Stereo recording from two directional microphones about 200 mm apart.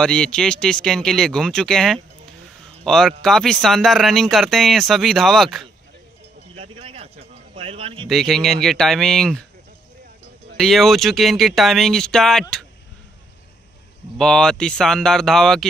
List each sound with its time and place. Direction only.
0.0 s speech: 5° left (ahead or behind)
6.5 s a sound: 30° right (ahead or behind)
7.5 s a man's voice: 30° right (ahead or behind)
8.1 s speech: centre (ahead or behind)
10.6 s speech: centre (ahead or behind)
14.1 s speech: 5° left (ahead or behind)